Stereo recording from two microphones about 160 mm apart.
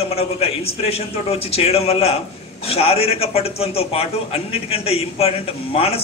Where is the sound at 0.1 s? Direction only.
40° left (ahead or behind).